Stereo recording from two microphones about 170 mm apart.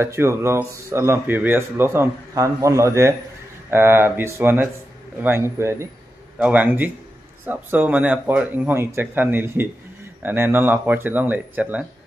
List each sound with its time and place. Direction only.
0.0 s speech: 15° right (ahead or behind)